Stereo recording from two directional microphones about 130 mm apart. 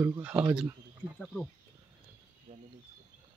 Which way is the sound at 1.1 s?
5° left (ahead or behind).